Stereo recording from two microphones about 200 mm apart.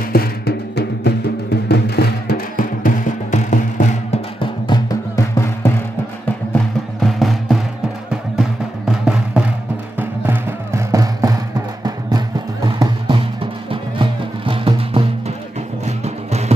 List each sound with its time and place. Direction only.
0.1 s music: 50° left (ahead or behind)
4.4 s music: 20° left (ahead or behind)
7.0 s music: centre (ahead or behind); by 11.3 s 15° right (ahead or behind)
12.6 s music: 20° right (ahead or behind)